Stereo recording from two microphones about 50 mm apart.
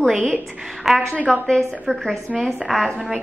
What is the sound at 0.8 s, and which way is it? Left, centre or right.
Speech, centre.